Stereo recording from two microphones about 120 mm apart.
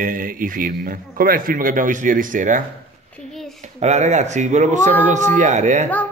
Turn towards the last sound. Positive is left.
turn(degrees=-80)